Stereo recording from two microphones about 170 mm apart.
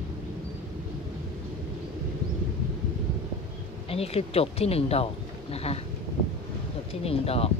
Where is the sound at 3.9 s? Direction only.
35° left (ahead or behind).